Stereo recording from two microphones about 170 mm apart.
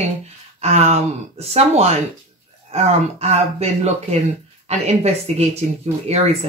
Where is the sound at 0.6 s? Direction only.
40° right (ahead or behind).